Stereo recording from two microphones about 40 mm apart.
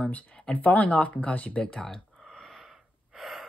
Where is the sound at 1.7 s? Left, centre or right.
Centre.